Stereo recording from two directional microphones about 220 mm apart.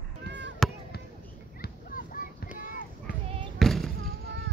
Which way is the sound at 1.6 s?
40° left (ahead or behind).